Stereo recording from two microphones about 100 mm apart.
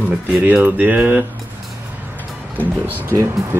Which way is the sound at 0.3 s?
15° right (ahead or behind).